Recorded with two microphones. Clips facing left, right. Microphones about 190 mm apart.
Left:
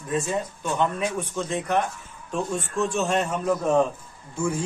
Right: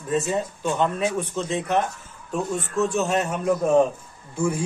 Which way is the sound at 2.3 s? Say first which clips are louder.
Right 2 dB; 5° right (ahead or behind).